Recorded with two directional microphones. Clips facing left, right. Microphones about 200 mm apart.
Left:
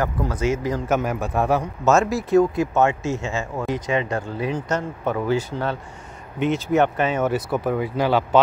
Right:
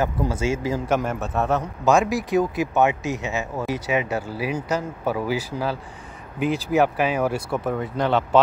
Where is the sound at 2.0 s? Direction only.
15° right (ahead or behind).